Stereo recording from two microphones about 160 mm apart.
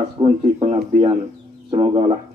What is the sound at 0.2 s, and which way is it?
A man's voice, 35° right (ahead or behind).